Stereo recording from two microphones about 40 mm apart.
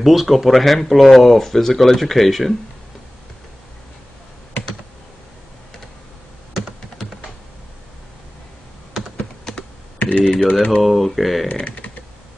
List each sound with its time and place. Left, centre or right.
0.0 s speech: centre
9.0 s computer keyboard: centre
9.4 s computer keyboard: centre
9.9 s computer keyboard: left
10.3 s speech: left
10.8 s speech: centre
11.4 s speech: left